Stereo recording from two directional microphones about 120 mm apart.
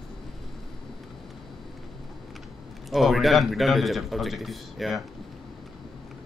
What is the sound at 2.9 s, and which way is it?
A man's voice, centre (ahead or behind).